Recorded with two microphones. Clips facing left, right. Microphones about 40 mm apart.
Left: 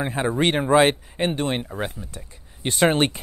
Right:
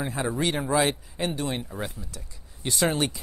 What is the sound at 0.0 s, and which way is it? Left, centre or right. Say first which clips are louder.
Speech: left 5 dB; left.